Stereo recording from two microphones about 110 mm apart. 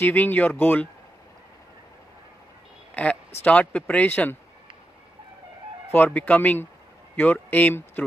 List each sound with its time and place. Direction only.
0.0 s speech: 15° left (ahead or behind)
2.9 s a sound: 15° left (ahead or behind)
3.4 s speech: 15° left (ahead or behind)
5.9 s speech: 15° left (ahead or behind)